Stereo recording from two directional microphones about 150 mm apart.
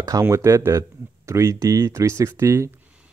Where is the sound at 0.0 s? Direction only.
20° right (ahead or behind).